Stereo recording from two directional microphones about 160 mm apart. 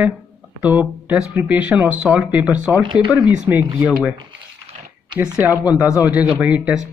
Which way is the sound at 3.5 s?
10° right (ahead or behind).